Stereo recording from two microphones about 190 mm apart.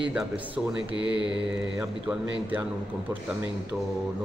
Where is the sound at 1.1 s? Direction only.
5° right (ahead or behind).